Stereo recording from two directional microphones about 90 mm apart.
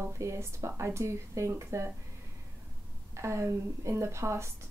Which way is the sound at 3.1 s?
35° right (ahead or behind).